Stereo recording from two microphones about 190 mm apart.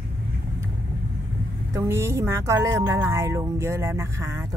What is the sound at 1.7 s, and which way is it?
Speech, 15° right (ahead or behind).